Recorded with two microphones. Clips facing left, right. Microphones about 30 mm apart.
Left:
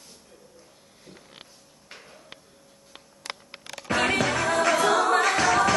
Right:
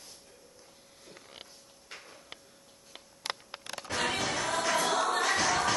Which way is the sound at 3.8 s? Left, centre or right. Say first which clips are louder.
Left 8 dB; left.